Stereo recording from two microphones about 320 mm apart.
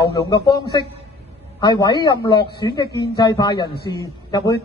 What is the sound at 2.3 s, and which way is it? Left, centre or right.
Speech, left.